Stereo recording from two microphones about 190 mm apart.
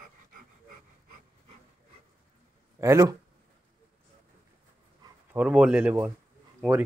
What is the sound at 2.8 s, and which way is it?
Speech, 15° right (ahead or behind).